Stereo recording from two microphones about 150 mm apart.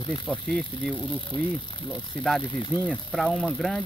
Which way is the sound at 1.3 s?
30° left (ahead or behind).